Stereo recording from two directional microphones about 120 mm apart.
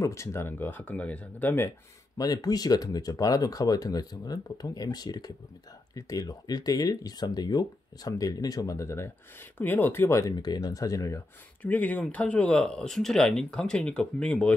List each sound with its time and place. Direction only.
0.0 s speech: 25° left (ahead or behind)
2.1 s speech: 30° left (ahead or behind)
11.6 s speech: 15° left (ahead or behind)